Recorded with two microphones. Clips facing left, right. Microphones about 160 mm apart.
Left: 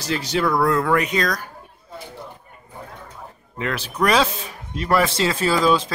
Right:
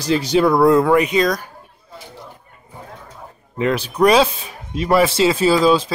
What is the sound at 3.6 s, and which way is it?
Speech, 20° right (ahead or behind).